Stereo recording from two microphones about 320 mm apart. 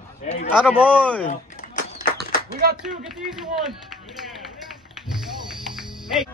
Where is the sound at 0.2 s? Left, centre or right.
Left.